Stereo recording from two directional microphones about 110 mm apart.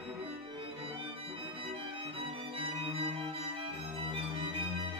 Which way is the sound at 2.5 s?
60° right (ahead or behind).